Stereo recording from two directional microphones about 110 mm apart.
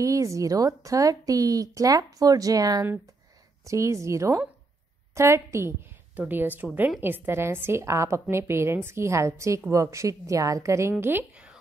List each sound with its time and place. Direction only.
0.0 s a woman's voice: 30° right (ahead or behind)